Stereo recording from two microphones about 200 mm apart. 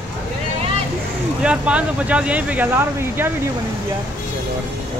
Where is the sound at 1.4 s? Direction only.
5° right (ahead or behind).